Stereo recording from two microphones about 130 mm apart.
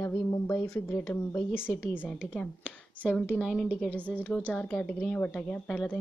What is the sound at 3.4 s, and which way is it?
A woman's voice, centre (ahead or behind).